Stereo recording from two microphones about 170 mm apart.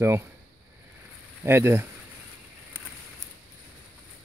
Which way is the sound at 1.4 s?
15° right (ahead or behind).